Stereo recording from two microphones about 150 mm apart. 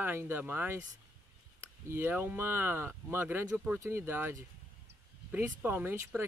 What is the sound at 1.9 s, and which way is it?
Speech, 15° right (ahead or behind).